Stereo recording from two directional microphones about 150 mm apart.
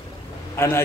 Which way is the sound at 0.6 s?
15° left (ahead or behind).